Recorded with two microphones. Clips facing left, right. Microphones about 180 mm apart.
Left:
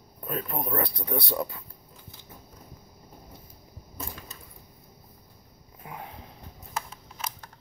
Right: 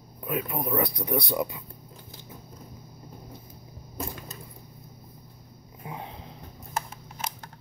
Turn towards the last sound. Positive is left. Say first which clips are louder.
# right 3 dB
turn(degrees=-20)  # may be behind; listen again after turning